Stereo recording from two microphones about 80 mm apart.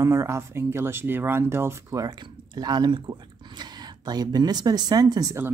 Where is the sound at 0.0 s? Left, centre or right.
Right.